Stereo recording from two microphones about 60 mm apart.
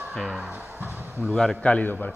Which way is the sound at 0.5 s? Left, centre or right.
Right.